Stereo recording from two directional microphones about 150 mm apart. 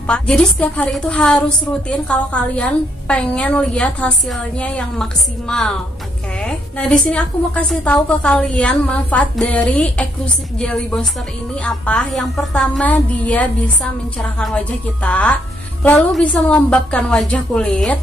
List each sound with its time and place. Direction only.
0.0 s a woman's voice: 5° left (ahead or behind)
15.0 s a woman's voice: 10° left (ahead or behind)